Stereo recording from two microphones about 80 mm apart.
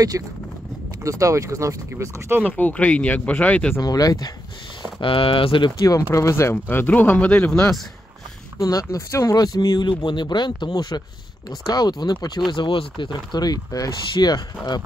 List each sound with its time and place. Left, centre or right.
0.1 s speech: right
2.4 s speech: left
3.8 s speech: left
5.0 s speech: left
5.9 s speech: left
6.5 s speech: left
8.5 s speech: left
12.4 s speech: left
14.1 s speech: left